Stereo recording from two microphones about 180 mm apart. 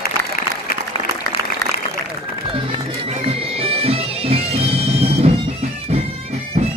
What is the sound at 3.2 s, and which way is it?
Bagpipes, 30° right (ahead or behind).